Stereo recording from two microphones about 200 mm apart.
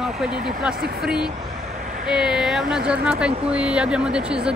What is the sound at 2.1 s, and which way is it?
Speech, centre (ahead or behind).